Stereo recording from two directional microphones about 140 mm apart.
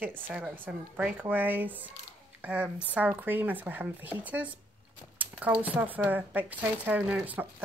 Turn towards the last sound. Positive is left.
turn(degrees=-10)  # may be behind; listen again after turning